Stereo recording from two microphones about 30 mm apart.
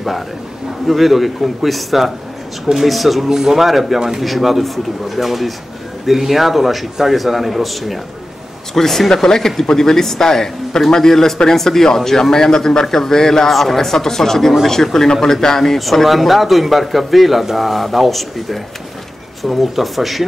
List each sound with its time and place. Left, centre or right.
0.8 s a man's voice: centre
3.3 s speech: centre
3.6 s a man's voice: centre
8.7 s speech: centre
13.5 s a man's voice: centre
13.7 s speech: centre
15.8 s a man's voice: centre